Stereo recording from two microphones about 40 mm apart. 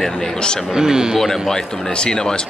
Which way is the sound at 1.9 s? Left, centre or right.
Centre.